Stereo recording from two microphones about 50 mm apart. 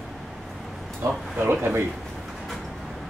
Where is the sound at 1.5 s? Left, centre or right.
Right.